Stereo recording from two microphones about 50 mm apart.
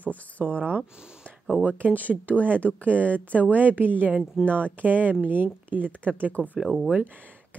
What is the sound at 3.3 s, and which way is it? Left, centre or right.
Speech, right.